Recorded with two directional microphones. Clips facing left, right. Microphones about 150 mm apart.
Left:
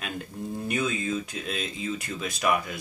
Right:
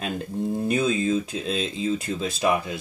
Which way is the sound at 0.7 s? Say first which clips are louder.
Right 5 dB; 30° right (ahead or behind).